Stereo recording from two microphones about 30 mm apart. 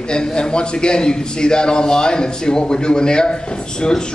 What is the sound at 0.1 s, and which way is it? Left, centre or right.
A man's voice, left.